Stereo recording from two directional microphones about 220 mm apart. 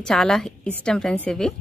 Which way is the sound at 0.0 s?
Centre (ahead or behind).